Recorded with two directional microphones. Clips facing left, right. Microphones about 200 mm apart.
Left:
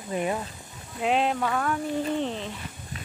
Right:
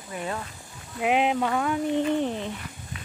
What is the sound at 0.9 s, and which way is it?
Speech, 10° right (ahead or behind).